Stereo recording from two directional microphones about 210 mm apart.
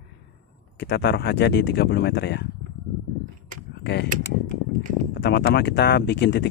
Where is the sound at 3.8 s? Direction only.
55° left (ahead or behind).